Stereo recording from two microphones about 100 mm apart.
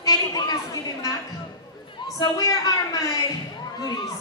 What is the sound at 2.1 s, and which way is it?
Speech, 40° left (ahead or behind).